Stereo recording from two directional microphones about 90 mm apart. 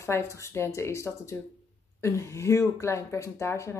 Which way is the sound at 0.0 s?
30° left (ahead or behind).